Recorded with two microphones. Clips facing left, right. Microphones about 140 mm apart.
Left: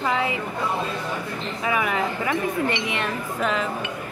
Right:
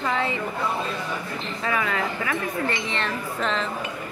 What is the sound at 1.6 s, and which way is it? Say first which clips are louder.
Speech: left 2 dB; 15° left (ahead or behind).